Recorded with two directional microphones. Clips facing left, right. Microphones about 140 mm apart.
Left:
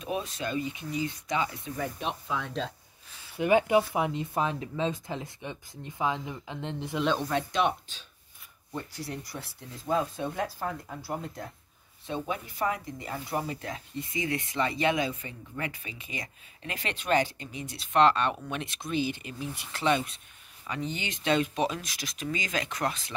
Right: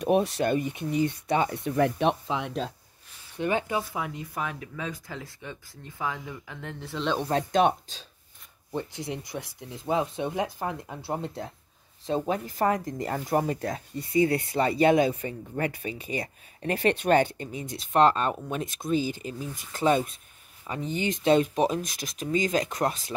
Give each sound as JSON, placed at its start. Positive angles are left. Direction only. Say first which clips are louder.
{"t": 0.0, "sound": "speech", "louder": "right 9 dB", "side_deg": -65}
{"t": 2.2, "sound": "speech", "louder": "right 3 dB", "side_deg": -20}
{"t": 3.3, "sound": "speech", "louder": "left 5 dB", "side_deg": 15}
{"t": 7.2, "sound": "speech", "louder": "right 4 dB", "side_deg": -40}
{"t": 8.7, "sound": "speech", "louder": "right 4 dB", "side_deg": -20}
{"t": 12.1, "sound": "speech", "louder": "right 6 dB", "side_deg": -40}
{"t": 17.0, "sound": "speech", "louder": "left 1 dB", "side_deg": -50}